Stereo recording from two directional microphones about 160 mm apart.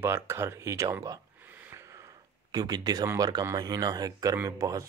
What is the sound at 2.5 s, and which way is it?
Speech, 25° right (ahead or behind).